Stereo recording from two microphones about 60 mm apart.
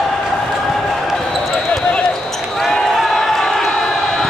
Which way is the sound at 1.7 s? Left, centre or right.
Centre.